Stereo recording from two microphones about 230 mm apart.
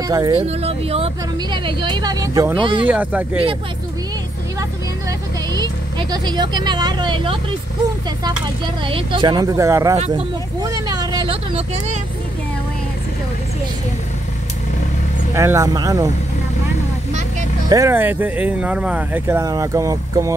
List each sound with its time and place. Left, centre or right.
0.1 s speech: centre
0.5 s speech: right
2.9 s speech: centre
5.5 s speech: centre
8.8 s speech: right
9.9 s speech: right
10.6 s speech: centre
15.3 s speech: centre
17.6 s speech: centre